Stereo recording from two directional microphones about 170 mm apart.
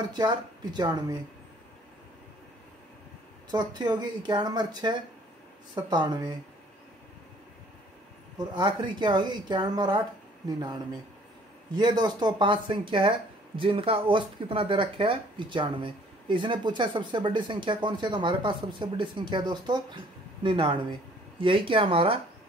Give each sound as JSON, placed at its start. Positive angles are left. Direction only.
{"t": 0.0, "sound": "speech", "side_deg": -25}
{"t": 3.5, "sound": "speech", "side_deg": -25}
{"t": 8.5, "sound": "speech", "side_deg": -25}